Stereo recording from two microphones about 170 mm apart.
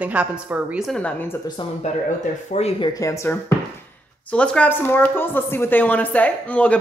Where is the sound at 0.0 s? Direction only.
10° right (ahead or behind).